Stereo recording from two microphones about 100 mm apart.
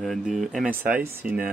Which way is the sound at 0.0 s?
Centre (ahead or behind).